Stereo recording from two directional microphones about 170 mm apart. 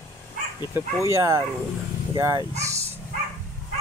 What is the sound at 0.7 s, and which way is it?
Speech, 15° right (ahead or behind).